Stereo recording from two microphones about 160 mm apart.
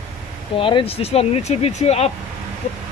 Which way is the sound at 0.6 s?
35° left (ahead or behind).